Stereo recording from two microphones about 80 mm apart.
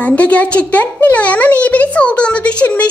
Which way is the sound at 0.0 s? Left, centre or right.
Centre.